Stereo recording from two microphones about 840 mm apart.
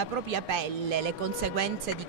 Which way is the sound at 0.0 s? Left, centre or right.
Right.